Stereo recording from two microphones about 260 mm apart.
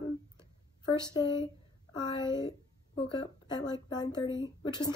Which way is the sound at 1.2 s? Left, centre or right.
Centre.